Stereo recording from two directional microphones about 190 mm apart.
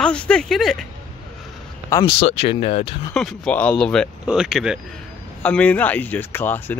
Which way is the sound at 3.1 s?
Centre (ahead or behind).